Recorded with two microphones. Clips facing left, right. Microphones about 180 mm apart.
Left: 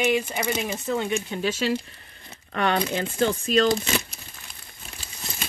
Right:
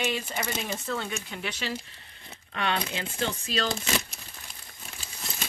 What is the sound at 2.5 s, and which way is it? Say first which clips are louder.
Speech: left 6 dB; 50° left (ahead or behind).